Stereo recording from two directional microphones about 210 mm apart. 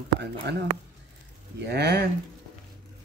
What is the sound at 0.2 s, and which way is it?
Speech, 55° right (ahead or behind).